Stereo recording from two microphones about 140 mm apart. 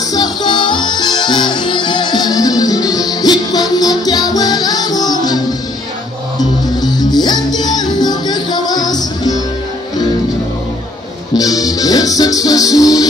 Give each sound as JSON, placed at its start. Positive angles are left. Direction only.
{"t": 0.1, "sound": "music", "side_deg": 30}
{"t": 11.3, "sound": "music", "side_deg": 25}